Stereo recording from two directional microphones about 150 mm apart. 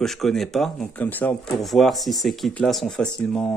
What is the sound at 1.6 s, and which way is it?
Speech, centre (ahead or behind).